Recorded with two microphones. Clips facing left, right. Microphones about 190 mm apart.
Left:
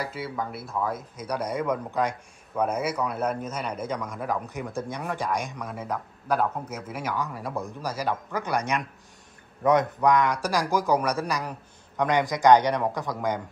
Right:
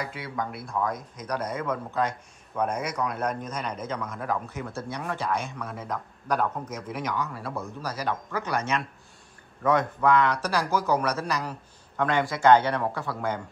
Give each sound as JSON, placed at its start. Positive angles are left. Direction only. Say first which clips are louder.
{"t": 0.0, "sound": "speech", "louder": "left 1 dB", "side_deg": 5}